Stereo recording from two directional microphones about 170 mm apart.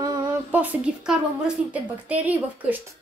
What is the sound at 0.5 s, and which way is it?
A woman's voice, 10° right (ahead or behind).